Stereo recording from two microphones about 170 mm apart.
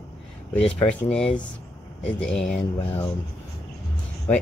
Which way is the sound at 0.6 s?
5° left (ahead or behind).